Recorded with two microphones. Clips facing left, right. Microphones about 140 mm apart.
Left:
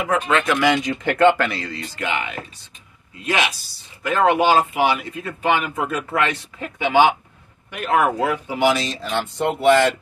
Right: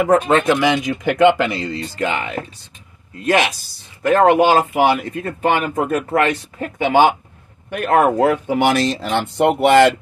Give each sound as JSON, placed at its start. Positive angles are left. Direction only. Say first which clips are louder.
{"t": 0.3, "sound": "speech", "louder": "right 5 dB", "side_deg": -35}
{"t": 0.6, "sound": "speech", "louder": "right 1 dB", "side_deg": -15}
{"t": 1.6, "sound": "speech", "louder": "right 6 dB", "side_deg": -30}
{"t": 4.0, "sound": "speech", "louder": "right 5 dB", "side_deg": -50}